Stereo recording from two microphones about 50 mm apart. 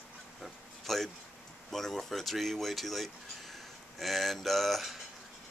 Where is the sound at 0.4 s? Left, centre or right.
Centre.